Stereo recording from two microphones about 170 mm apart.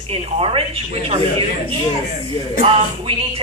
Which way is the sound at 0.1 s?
35° right (ahead or behind).